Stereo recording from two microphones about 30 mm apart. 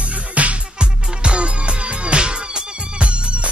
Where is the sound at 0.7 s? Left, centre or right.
Right.